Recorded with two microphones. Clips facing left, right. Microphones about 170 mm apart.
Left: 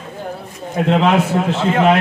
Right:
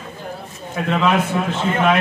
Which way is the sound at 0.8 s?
35° left (ahead or behind).